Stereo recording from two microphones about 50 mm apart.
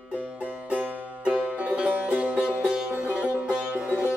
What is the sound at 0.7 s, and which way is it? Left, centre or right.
Music, right.